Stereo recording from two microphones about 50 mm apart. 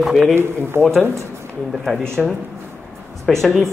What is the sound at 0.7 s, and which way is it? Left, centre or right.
Speech, right.